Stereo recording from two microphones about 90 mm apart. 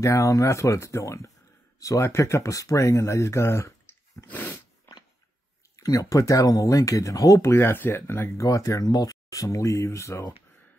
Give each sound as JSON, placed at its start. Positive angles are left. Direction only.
{"t": 0.0, "sound": "speech", "side_deg": 35}
{"t": 5.8, "sound": "speech", "side_deg": 40}